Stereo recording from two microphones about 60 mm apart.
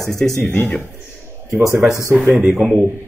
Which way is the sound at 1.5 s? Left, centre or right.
Right.